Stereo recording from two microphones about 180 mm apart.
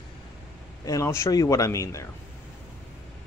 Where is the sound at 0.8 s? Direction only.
15° left (ahead or behind).